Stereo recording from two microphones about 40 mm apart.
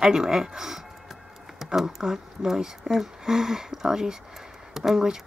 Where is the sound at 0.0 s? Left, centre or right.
Centre.